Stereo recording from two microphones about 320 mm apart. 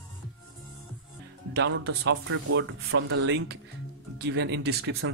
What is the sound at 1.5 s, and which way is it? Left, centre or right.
Speech, right.